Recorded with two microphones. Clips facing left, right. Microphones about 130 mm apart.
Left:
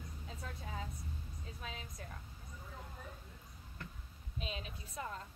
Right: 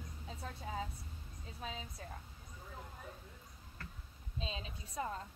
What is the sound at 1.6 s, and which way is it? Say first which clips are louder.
Speech: right 4 dB; 30° right (ahead or behind).